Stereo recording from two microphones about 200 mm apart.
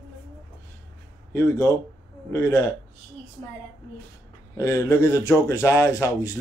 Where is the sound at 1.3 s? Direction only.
15° left (ahead or behind).